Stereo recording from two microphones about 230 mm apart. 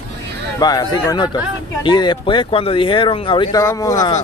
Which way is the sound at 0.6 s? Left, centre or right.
Centre.